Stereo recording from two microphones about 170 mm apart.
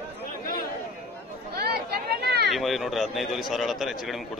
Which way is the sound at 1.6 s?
70° right (ahead or behind).